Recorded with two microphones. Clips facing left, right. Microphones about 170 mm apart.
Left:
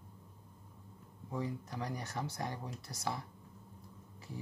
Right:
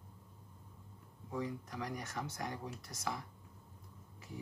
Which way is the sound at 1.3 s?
30° left (ahead or behind).